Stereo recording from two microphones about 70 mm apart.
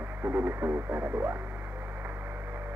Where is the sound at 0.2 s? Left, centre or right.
Right.